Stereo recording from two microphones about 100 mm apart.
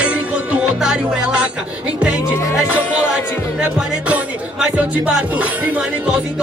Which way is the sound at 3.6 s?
10° right (ahead or behind).